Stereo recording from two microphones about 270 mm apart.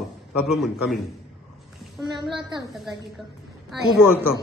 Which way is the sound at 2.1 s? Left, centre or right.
Centre.